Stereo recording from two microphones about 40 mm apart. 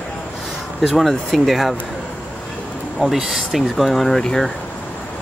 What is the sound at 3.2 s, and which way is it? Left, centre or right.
Speech, centre.